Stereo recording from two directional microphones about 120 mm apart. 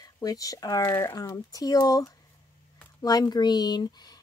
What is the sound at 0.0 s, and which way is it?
Speech, 30° left (ahead or behind).